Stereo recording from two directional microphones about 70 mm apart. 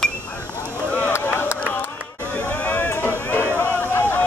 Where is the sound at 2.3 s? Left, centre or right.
Left.